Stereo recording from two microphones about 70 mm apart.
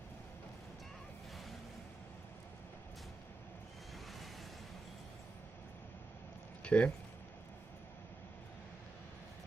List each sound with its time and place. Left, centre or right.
6.6 s speech: centre